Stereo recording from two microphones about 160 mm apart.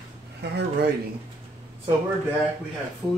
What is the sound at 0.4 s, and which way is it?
Speech, 90° right.